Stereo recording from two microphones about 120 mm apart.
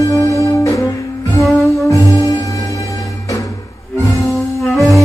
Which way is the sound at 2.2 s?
35° left (ahead or behind).